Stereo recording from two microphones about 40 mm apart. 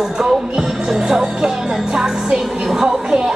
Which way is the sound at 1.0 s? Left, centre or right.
Centre.